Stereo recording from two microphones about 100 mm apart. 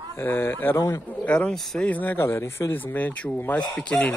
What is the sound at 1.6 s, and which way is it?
Speech, 5° left (ahead or behind).